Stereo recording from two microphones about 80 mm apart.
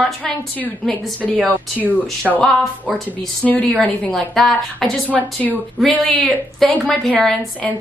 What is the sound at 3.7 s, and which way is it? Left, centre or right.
A woman's voice, centre.